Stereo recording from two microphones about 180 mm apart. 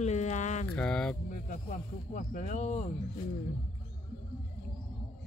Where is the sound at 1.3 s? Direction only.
45° left (ahead or behind).